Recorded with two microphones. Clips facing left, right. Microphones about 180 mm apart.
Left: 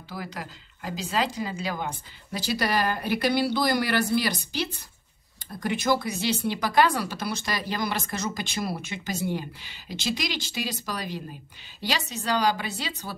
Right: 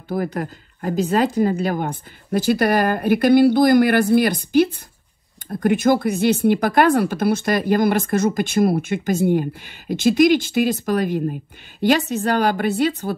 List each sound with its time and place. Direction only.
0.1 s speech: 55° right (ahead or behind)